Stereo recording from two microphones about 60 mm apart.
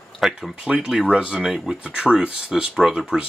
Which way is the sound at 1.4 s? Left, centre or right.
Centre.